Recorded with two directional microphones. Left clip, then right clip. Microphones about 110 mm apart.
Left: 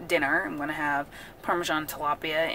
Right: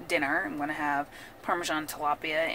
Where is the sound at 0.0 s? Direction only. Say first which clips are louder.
Left 3 dB; 30° left (ahead or behind).